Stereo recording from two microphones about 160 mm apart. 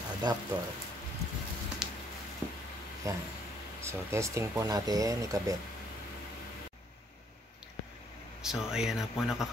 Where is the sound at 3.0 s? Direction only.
20° right (ahead or behind).